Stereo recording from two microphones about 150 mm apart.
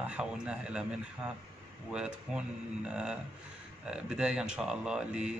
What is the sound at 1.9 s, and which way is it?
A man's voice, 5° right (ahead or behind).